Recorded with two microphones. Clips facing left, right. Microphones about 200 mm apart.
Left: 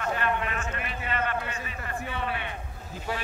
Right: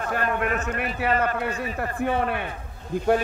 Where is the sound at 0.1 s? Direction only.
50° right (ahead or behind).